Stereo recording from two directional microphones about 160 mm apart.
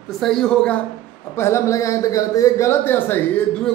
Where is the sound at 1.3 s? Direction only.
15° left (ahead or behind).